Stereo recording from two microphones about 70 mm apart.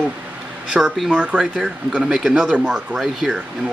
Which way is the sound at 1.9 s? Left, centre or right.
Centre.